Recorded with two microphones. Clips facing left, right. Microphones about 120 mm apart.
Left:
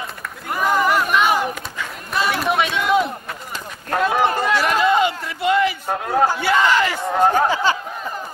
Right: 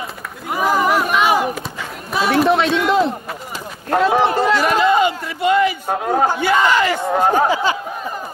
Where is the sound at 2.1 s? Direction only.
Centre (ahead or behind).